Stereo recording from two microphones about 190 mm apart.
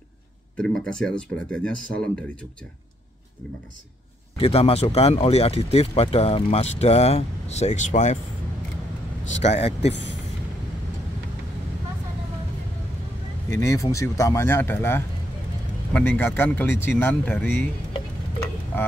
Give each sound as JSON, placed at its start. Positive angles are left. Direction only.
{"t": 0.6, "sound": "speech", "side_deg": 5}
{"t": 4.4, "sound": "speech", "side_deg": 30}
{"t": 9.4, "sound": "speech", "side_deg": 35}
{"t": 13.5, "sound": "speech", "side_deg": 15}